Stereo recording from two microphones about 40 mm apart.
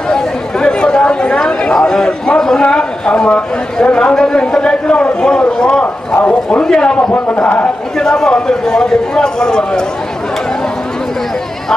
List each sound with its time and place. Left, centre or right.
0.1 s chatter: centre
2.0 s a man's voice: left
7.4 s a man's voice: left
8.0 s a man's voice: centre